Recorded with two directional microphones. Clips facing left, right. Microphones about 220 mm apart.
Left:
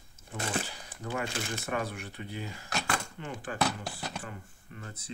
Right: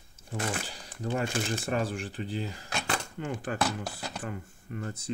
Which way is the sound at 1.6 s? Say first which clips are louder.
Right 4 dB; 30° right (ahead or behind).